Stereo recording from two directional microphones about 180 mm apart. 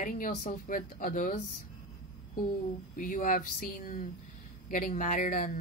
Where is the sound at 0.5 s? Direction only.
50° left (ahead or behind).